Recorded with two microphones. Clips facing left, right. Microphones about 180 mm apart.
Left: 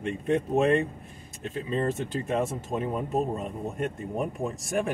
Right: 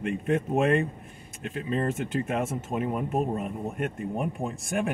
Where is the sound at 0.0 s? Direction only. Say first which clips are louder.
Even; 35° left (ahead or behind).